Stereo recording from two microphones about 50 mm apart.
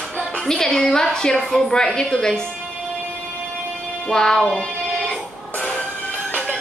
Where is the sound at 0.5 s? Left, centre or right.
Centre.